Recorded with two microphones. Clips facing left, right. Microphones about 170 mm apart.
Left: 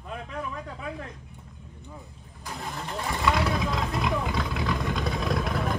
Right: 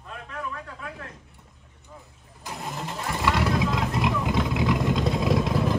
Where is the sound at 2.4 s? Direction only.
20° right (ahead or behind).